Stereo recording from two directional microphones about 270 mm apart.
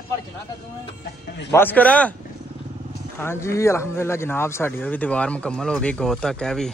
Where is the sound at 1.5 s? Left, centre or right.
Centre.